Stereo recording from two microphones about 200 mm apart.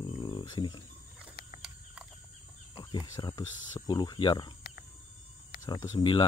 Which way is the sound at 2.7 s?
20° left (ahead or behind).